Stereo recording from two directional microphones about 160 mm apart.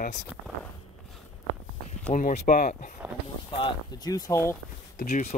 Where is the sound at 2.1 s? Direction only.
50° left (ahead or behind).